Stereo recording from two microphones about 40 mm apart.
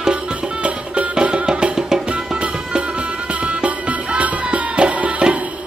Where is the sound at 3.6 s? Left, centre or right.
Right.